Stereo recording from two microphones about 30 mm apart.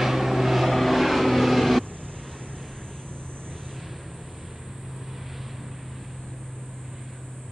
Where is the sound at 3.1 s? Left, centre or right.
Left.